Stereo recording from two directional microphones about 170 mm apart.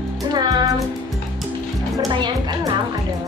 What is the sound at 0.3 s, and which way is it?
Music, 25° right (ahead or behind).